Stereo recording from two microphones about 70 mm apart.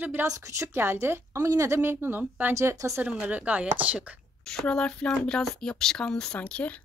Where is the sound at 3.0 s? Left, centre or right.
Right.